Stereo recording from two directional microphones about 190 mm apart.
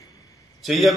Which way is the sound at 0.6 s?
Centre (ahead or behind).